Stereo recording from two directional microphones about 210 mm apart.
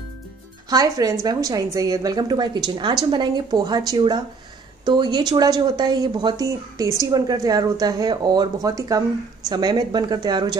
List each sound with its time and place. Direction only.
0.7 s a woman's voice: 15° right (ahead or behind)